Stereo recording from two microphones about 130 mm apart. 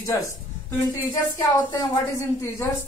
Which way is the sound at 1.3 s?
25° left (ahead or behind).